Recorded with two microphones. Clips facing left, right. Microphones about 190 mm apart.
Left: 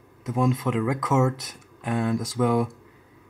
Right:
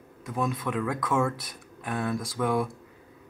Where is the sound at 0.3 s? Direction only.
20° left (ahead or behind).